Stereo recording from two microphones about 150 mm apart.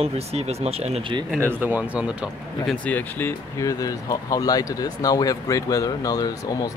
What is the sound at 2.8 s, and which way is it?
Speech, 10° left (ahead or behind).